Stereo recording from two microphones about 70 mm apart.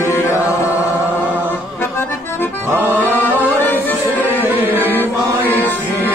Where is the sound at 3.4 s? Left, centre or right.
Left.